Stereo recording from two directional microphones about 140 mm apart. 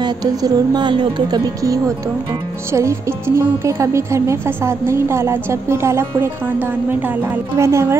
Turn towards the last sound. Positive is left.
turn(degrees=-20)  # may be behind; listen again after turning